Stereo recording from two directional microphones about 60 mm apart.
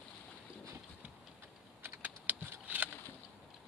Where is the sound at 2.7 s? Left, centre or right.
Right.